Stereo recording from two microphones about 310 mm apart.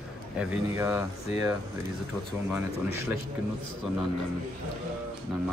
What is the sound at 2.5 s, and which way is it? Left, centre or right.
Speech, centre.